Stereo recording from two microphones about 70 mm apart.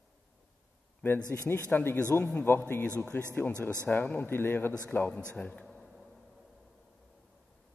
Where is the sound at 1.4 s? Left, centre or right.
Left.